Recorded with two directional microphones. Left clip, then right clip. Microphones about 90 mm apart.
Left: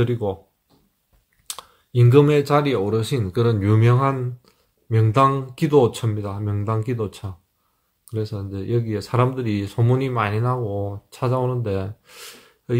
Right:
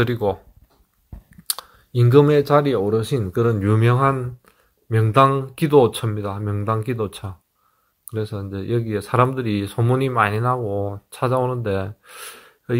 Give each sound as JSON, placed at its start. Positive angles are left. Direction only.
{"t": 0.0, "sound": "speech", "side_deg": -25}
{"t": 1.5, "sound": "speech", "side_deg": -20}